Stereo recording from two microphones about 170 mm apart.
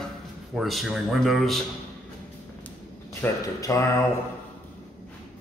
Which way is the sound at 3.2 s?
15° left (ahead or behind).